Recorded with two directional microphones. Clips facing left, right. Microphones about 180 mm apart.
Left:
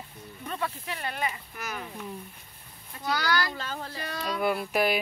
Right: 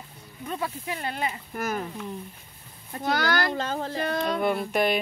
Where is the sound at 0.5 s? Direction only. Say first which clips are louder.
Right 2 dB; 10° right (ahead or behind).